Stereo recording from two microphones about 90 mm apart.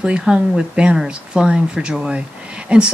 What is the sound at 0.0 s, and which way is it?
Speech, 10° right (ahead or behind).